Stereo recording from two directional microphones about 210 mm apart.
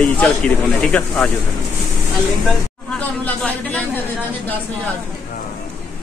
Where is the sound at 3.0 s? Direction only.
5° left (ahead or behind).